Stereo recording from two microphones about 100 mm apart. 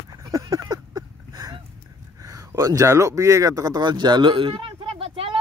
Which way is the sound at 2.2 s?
35° right (ahead or behind).